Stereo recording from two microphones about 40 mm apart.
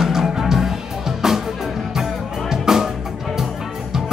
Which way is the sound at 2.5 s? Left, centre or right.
Centre.